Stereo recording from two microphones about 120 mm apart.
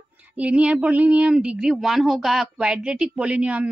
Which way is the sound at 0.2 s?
10° right (ahead or behind).